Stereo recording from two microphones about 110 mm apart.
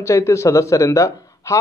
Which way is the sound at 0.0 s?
25° left (ahead or behind).